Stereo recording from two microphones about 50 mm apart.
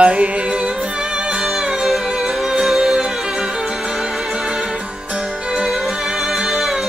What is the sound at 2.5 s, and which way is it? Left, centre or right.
Music, centre.